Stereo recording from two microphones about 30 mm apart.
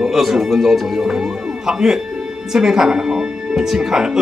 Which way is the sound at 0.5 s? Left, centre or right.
Centre.